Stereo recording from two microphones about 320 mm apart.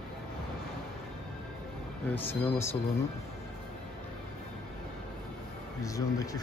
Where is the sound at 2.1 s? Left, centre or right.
Centre.